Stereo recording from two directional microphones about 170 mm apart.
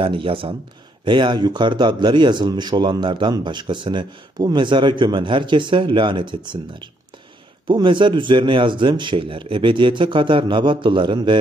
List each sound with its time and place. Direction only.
0.0 s a man's voice: 30° right (ahead or behind)